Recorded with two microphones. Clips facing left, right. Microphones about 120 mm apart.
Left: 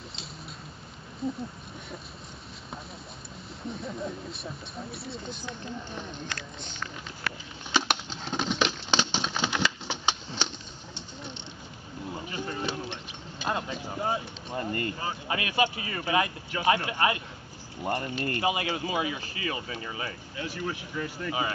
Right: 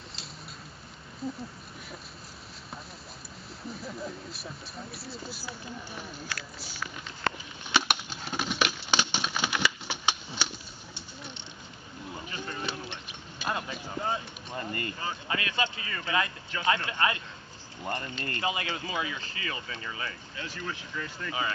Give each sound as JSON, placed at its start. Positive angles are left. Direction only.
{"t": 3.6, "sound": "speech", "side_deg": 0}
{"t": 7.7, "sound": "patter", "side_deg": -15}
{"t": 12.1, "sound": "boat", "side_deg": 20}
{"t": 13.8, "sound": "speech", "side_deg": 20}